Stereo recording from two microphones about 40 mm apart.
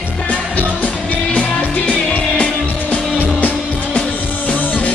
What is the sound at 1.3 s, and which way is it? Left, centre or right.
Music, left.